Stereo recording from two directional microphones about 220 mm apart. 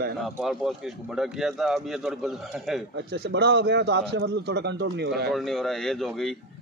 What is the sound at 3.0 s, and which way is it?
Speech, 50° right (ahead or behind).